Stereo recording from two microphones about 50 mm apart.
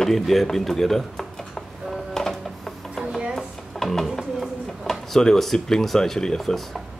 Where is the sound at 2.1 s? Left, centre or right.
Centre.